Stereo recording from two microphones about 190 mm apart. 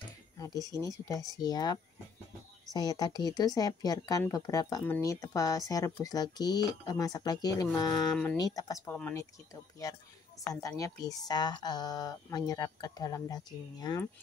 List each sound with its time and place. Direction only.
0.7 s speech: 15° left (ahead or behind)